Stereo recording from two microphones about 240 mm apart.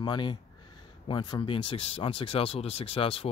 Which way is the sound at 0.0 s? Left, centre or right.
Centre.